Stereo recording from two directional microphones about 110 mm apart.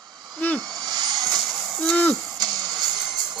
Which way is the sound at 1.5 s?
10° left (ahead or behind).